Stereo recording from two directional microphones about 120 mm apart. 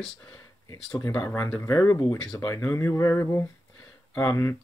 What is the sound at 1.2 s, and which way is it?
Speech, 20° left (ahead or behind).